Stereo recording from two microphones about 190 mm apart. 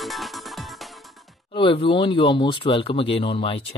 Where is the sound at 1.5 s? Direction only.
25° left (ahead or behind).